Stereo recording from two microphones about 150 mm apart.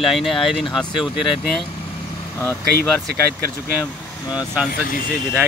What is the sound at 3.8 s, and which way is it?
Speech, 25° left (ahead or behind).